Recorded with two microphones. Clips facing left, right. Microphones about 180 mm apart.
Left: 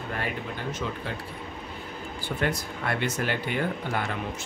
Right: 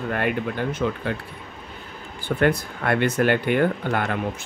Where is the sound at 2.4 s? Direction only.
55° right (ahead or behind).